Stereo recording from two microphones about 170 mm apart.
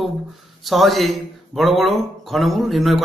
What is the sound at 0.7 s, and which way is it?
A man's voice, centre (ahead or behind).